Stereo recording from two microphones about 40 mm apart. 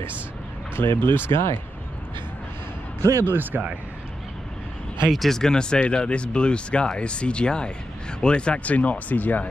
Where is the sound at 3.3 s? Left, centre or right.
Right.